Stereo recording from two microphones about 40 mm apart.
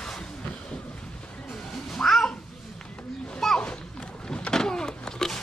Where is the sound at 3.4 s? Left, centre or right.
Centre.